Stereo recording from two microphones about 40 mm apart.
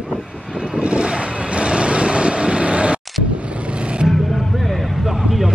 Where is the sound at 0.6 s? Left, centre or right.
Right.